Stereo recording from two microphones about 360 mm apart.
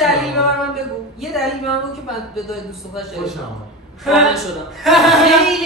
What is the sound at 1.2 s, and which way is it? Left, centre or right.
A man's voice, centre.